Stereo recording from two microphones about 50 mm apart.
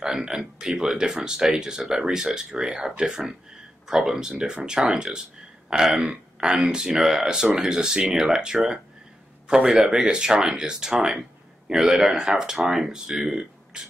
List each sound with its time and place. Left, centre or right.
0.0 s speech: centre